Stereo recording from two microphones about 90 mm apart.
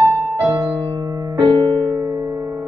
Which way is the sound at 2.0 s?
40° right (ahead or behind).